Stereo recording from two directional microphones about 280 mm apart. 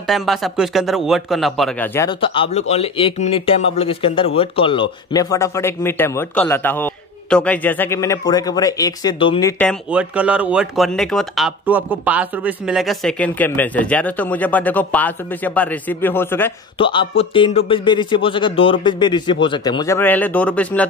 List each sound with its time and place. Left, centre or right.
0.0 s speech: centre